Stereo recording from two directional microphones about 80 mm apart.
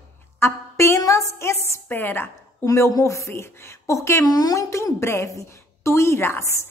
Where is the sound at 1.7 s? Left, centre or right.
Left.